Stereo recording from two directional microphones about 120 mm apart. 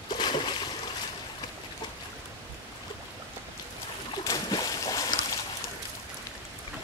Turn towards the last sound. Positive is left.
turn(degrees=30)  # may be behind; listen again after turning